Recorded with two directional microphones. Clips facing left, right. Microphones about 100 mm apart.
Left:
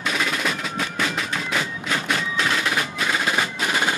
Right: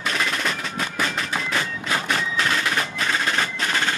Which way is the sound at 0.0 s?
5° left (ahead or behind).